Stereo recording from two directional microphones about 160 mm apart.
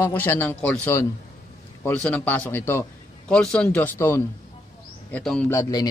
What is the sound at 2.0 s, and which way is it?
A man's voice, 10° left (ahead or behind).